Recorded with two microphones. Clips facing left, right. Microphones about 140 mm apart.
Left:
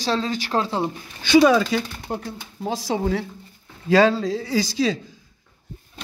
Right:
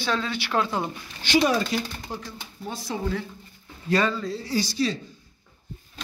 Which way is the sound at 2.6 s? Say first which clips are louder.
Left 7 dB; 90° left.